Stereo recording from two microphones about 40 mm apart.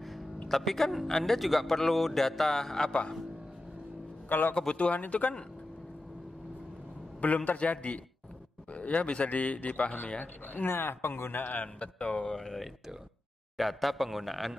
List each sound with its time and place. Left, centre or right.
0.4 s speech: centre
2.9 s speech: left
4.3 s a man's voice: left
4.6 s speech: left
4.9 s a man's voice: left
7.2 s a man's voice: left
10.6 s speech: left
11.4 s speech: left
12.3 s speech: centre
13.6 s a man's voice: centre